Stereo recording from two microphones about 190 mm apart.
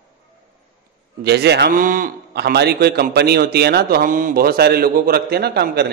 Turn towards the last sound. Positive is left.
turn(degrees=-60)  # may be behind; listen again after turning